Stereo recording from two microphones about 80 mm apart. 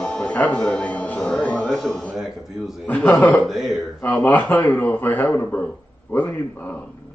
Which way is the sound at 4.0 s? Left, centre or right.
Left.